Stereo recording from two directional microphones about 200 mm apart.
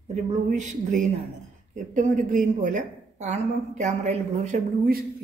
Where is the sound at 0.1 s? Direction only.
35° right (ahead or behind).